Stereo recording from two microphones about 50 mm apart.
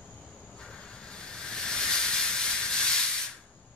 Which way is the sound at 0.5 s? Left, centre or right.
Centre.